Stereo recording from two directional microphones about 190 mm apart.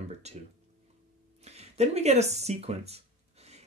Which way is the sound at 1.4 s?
35° right (ahead or behind).